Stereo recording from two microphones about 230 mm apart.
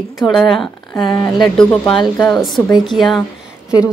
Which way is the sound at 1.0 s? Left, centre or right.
Centre.